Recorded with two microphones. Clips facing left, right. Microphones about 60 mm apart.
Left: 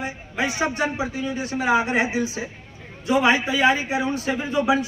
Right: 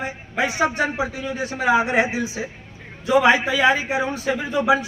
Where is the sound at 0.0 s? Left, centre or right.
Right.